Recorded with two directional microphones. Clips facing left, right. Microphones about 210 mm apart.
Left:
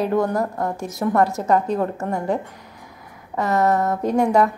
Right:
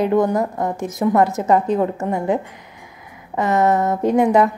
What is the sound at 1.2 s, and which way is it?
Speech, centre (ahead or behind).